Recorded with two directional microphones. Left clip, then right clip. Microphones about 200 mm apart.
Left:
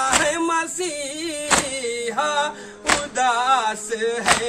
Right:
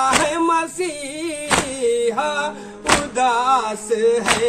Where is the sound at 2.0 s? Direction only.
20° left (ahead or behind).